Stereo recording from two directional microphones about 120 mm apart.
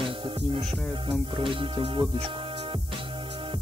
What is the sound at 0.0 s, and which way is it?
Music, 45° right (ahead or behind).